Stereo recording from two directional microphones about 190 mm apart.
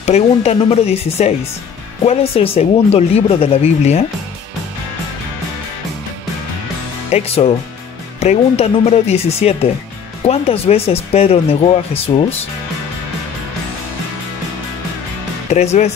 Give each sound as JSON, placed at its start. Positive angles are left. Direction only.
{"t": 0.0, "sound": "speech", "side_deg": 35}
{"t": 7.1, "sound": "speech", "side_deg": 35}
{"t": 15.5, "sound": "speech", "side_deg": 35}